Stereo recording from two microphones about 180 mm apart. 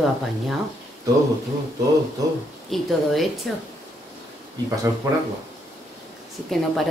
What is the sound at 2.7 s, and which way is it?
Speech, centre (ahead or behind).